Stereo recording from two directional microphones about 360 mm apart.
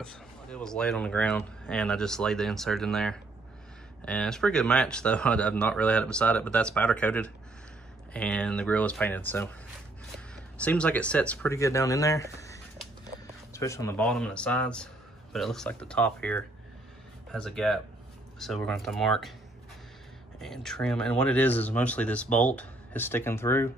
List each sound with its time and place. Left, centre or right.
0.0 s speech: centre
12.4 s a sound: centre
13.5 s speech: centre
20.3 s speech: centre